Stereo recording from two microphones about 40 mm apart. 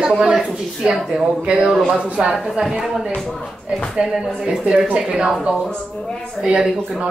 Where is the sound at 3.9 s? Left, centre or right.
Centre.